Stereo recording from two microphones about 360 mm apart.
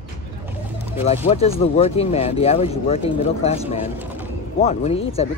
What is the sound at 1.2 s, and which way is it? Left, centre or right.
Speech, centre.